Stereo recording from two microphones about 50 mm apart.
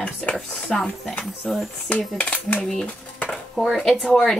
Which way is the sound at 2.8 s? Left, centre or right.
Left.